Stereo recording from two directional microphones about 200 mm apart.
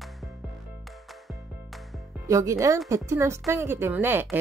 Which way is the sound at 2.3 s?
15° right (ahead or behind).